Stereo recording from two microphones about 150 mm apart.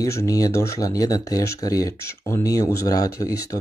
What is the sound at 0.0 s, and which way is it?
Speech, 20° left (ahead or behind).